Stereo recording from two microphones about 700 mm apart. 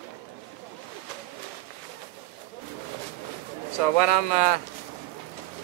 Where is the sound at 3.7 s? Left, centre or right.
Right.